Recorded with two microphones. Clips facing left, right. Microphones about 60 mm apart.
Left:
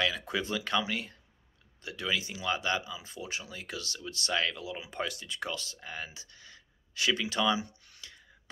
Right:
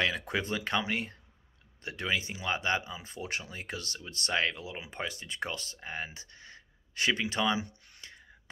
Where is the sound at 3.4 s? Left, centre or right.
Right.